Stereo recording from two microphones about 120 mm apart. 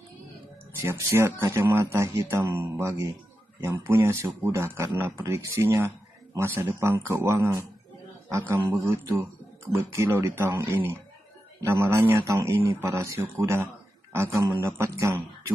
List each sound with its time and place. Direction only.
0.7 s a man's voice: 25° right (ahead or behind)